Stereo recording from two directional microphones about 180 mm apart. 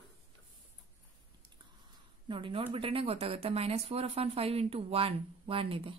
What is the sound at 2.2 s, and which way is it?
Speech, 30° right (ahead or behind).